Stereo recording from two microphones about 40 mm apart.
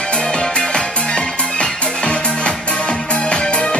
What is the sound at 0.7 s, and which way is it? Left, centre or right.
Music, left.